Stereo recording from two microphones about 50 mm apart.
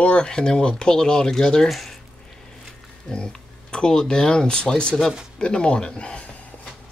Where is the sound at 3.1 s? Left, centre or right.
Centre.